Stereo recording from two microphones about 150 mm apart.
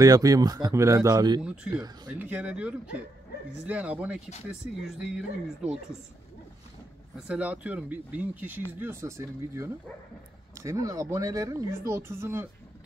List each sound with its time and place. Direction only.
0.0 s speech: 25° right (ahead or behind)
1.4 s speech: 5° right (ahead or behind)
7.2 s speech: 5° right (ahead or behind)